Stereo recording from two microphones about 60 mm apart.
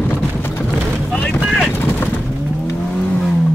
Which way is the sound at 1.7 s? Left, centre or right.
Left.